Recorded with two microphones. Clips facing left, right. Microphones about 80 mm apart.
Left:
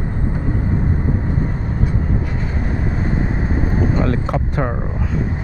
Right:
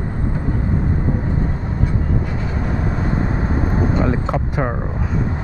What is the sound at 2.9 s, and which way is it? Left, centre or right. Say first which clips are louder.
Vehicle: even; right.